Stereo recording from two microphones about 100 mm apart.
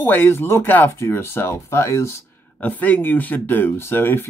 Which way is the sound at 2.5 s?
15° left (ahead or behind).